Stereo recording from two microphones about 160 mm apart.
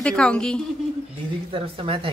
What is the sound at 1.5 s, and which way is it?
Speech, 35° right (ahead or behind).